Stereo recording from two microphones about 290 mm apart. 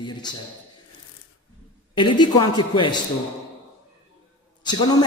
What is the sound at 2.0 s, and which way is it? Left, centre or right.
A man's voice, centre.